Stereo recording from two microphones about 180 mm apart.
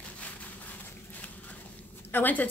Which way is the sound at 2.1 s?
10° left (ahead or behind).